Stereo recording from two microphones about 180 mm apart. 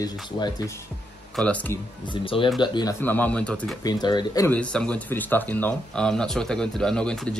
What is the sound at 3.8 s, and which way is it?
Speech, 20° left (ahead or behind).